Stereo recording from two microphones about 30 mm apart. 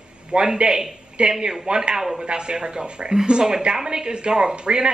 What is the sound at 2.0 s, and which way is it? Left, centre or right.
Speech, centre.